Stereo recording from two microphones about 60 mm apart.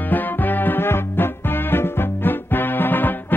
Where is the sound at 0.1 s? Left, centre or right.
Left.